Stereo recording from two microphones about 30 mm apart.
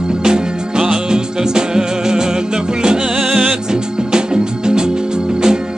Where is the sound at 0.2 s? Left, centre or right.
Right.